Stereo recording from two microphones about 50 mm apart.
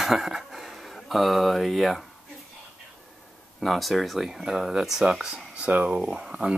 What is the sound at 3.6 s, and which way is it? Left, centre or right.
Speech, centre.